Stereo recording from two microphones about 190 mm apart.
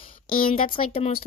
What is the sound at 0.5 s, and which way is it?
Speech, 30° left (ahead or behind).